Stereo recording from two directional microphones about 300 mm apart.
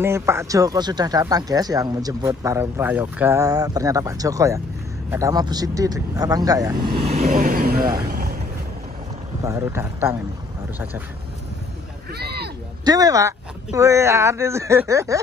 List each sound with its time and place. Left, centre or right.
0.0 s speech: centre
6.9 s speech: right
9.4 s speech: centre
12.1 s a sound: right
12.8 s speech: centre